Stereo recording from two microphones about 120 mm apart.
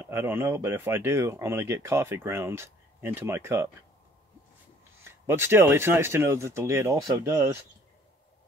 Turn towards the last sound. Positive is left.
turn(degrees=-30)  # may be behind; listen again after turning